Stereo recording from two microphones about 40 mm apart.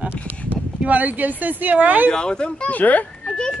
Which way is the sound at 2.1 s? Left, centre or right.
Left.